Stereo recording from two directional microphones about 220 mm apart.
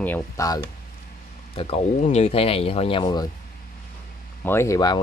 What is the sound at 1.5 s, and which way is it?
Speech, 25° left (ahead or behind).